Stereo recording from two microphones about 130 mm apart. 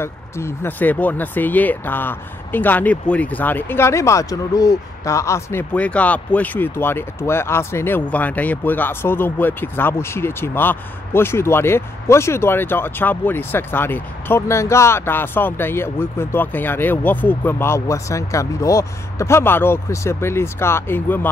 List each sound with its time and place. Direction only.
0.0 s speech: 20° left (ahead or behind)